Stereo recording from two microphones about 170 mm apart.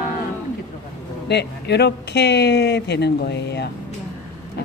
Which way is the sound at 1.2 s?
80° left.